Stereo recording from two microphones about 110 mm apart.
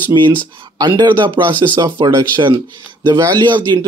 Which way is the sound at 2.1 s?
45° right (ahead or behind).